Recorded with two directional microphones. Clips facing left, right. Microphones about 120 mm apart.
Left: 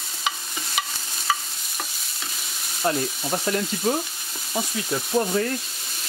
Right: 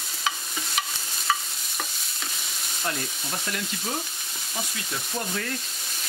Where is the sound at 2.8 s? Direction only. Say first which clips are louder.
Left 8 dB; 35° left (ahead or behind).